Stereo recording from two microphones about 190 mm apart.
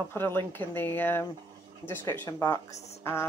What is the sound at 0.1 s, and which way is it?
Speech, 10° left (ahead or behind).